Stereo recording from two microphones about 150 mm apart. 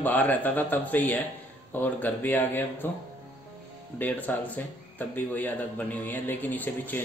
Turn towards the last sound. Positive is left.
turn(degrees=10)  # may be behind; listen again after turning